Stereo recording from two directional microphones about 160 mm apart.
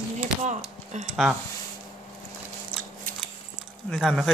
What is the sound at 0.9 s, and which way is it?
Speech, 50° right (ahead or behind).